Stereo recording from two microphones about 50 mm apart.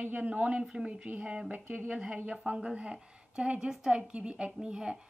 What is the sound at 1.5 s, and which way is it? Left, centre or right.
Speech, right.